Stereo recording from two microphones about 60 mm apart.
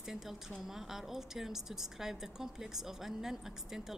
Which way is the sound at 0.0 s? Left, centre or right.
Centre.